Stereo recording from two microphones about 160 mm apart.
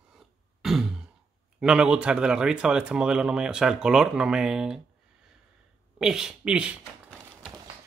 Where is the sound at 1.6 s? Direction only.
5° right (ahead or behind).